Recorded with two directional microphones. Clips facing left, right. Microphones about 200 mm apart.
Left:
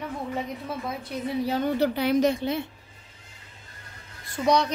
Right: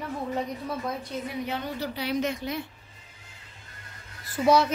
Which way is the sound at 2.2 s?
30° left (ahead or behind).